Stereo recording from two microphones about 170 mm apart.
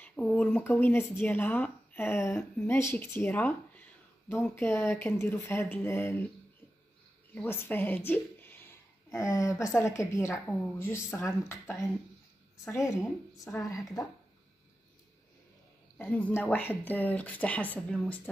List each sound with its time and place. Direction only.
0.0 s speech: 10° left (ahead or behind)
3.2 s a sound: 10° left (ahead or behind)
4.6 s speech: 15° left (ahead or behind)
7.3 s a woman's voice: 10° left (ahead or behind)
16.0 s speech: 10° left (ahead or behind)